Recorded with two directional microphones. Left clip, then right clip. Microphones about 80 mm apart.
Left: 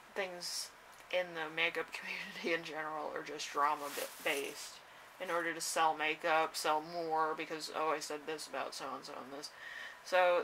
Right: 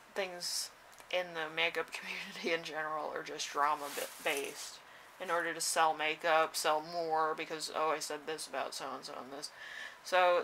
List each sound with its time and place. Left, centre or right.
0.1 s speech: right